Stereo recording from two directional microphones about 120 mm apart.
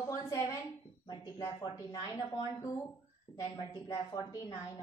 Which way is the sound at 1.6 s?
35° left (ahead or behind).